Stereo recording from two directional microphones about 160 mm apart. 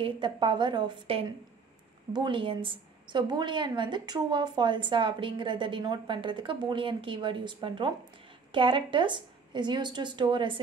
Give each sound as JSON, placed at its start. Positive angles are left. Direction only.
{"t": 0.0, "sound": "a woman's voice", "side_deg": -30}